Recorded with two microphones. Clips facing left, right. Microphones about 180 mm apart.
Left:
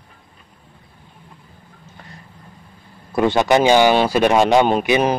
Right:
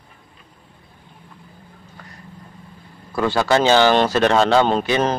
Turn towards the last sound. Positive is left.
turn(degrees=15)  # may be behind; listen again after turning